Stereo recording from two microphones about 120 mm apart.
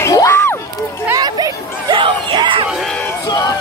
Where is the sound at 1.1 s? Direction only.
35° right (ahead or behind).